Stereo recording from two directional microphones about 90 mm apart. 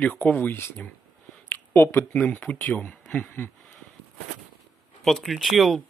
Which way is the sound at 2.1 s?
15° left (ahead or behind).